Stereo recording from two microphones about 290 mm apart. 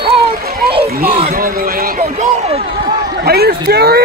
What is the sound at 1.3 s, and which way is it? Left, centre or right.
Run, right.